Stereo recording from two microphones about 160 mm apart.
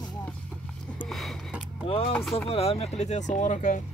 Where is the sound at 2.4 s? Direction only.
40° left (ahead or behind).